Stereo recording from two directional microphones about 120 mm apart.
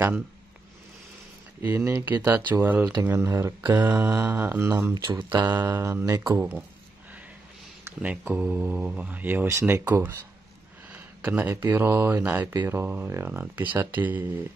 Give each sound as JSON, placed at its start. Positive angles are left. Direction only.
{"t": 1.6, "sound": "speech", "side_deg": -15}
{"t": 4.9, "sound": "speech", "side_deg": -40}
{"t": 7.8, "sound": "speech", "side_deg": -15}
{"t": 10.9, "sound": "a sound", "side_deg": -15}
{"t": 11.7, "sound": "speech", "side_deg": -20}